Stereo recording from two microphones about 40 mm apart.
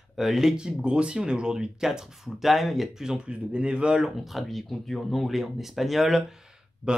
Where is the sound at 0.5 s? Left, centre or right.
Right; by 3.0 s centre.